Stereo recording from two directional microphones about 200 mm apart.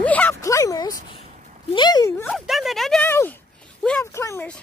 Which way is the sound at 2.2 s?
Centre (ahead or behind).